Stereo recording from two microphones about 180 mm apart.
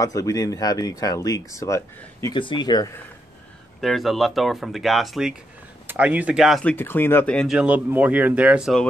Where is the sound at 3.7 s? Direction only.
Centre (ahead or behind).